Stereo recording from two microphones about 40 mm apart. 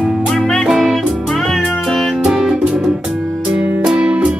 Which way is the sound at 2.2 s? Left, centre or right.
Centre.